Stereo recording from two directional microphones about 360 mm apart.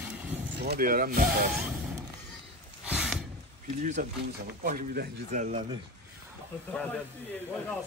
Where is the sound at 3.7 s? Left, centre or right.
Centre.